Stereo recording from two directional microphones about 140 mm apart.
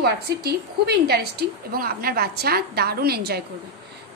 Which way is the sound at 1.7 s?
90° right.